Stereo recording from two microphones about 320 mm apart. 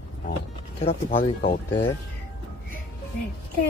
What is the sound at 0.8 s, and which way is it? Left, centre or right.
Speech, centre.